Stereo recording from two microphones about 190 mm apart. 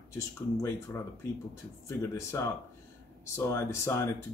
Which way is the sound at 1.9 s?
15° left (ahead or behind).